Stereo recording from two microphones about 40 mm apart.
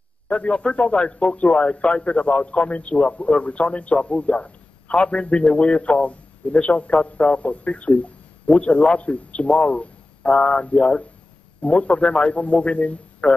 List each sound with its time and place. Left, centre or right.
0.3 s a man's voice: left